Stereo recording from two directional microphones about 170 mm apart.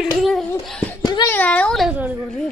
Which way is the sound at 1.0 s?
25° left (ahead or behind).